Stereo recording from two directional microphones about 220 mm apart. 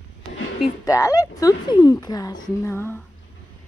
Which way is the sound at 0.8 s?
15° left (ahead or behind).